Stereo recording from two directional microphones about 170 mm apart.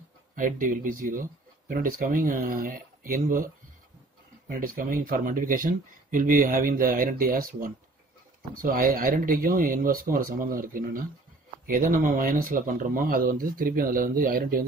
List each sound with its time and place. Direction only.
0.4 s speech: 50° right (ahead or behind)